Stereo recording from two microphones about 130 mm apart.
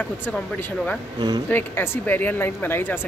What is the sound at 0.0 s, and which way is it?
Speech, 15° left (ahead or behind).